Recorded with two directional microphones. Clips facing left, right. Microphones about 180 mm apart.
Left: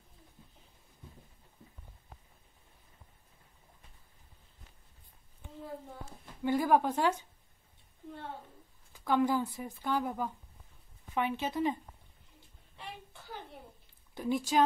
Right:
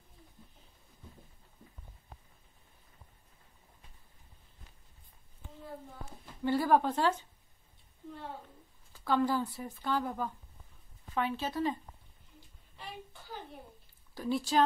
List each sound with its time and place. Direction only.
6.4 s speech: 15° left (ahead or behind)
8.9 s speech: 15° left (ahead or behind)
14.1 s speech: 15° left (ahead or behind)